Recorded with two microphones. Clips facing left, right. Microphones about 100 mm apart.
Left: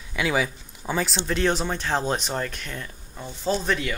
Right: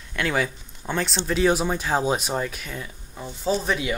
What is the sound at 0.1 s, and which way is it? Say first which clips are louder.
Speech: even; 5° left (ahead or behind).